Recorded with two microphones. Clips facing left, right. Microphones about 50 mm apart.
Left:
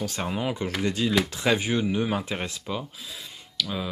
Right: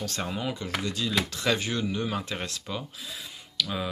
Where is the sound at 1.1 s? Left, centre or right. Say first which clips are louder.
Left 1 dB; centre.